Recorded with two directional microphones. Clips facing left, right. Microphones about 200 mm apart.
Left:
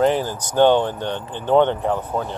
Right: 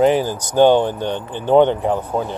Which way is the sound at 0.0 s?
10° right (ahead or behind).